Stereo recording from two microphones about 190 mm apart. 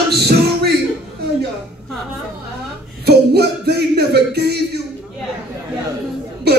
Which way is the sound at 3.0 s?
60° right (ahead or behind).